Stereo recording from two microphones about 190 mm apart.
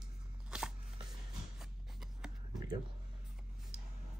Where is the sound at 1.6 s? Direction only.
Centre (ahead or behind).